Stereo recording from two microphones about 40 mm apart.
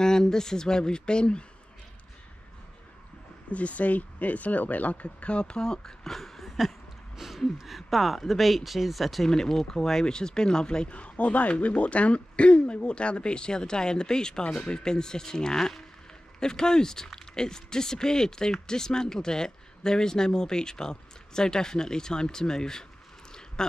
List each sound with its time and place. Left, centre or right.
0.0 s speech: centre
3.4 s speech: left; by 6.7 s centre
7.2 s gasp: centre
7.5 s speech: centre
9.3 s speech: centre
10.9 s speech: left; by 22.8 s centre